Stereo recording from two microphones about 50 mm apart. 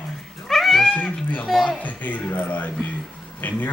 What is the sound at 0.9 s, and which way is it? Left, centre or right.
Cat, left.